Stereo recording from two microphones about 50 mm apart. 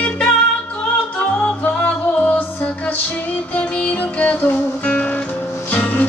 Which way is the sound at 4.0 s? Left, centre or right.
Left.